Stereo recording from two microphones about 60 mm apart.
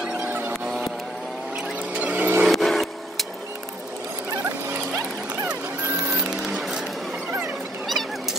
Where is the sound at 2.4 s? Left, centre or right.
Centre.